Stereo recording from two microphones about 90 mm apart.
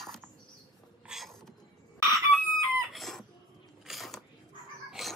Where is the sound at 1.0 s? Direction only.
Centre (ahead or behind).